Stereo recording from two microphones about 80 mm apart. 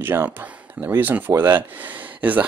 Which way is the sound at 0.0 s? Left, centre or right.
Right.